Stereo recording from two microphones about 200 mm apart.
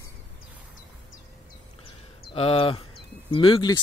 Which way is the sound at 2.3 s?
30° left (ahead or behind).